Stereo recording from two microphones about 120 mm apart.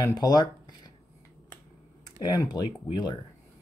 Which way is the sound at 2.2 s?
35° left (ahead or behind).